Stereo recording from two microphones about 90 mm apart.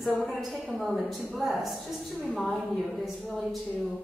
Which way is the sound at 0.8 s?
Centre (ahead or behind).